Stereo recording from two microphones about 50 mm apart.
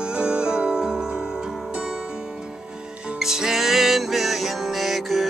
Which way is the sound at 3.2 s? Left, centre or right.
Centre.